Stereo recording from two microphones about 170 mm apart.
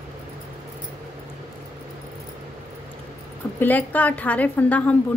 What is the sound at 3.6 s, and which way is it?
A woman's voice, 10° left (ahead or behind).